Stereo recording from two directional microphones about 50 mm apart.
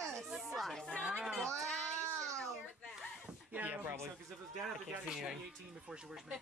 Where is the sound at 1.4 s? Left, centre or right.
Centre.